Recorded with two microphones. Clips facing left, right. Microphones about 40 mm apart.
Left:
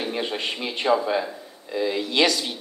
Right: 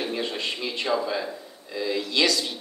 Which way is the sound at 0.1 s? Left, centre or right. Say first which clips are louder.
Left 1 dB; left.